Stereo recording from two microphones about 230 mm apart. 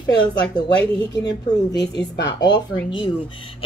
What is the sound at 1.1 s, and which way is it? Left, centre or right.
A woman's voice, centre.